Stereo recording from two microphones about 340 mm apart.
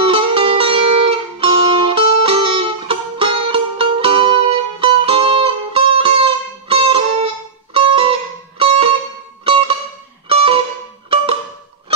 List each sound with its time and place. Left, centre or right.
0.0 s music: centre